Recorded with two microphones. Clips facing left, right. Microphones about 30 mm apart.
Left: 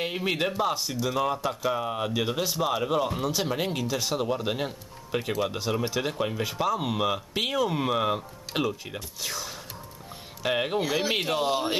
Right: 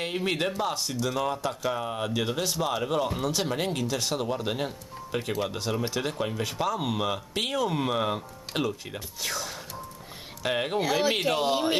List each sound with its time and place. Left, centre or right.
0.0 s speech: centre